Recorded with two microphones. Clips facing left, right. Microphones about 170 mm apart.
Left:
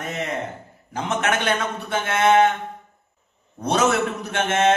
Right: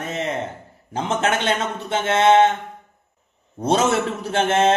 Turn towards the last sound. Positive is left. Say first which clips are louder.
# right 2 dB
turn(degrees=-30)  # may be behind; listen again after turning